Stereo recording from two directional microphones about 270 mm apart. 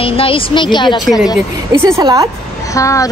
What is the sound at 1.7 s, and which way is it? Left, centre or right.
Speech, centre.